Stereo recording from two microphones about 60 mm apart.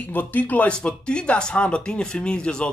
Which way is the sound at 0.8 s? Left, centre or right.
Centre.